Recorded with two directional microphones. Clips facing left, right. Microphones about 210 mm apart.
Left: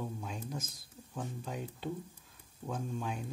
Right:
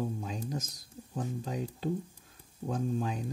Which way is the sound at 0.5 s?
40° right (ahead or behind).